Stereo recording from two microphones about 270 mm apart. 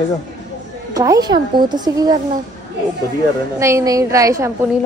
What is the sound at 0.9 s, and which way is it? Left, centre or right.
A woman's voice, centre.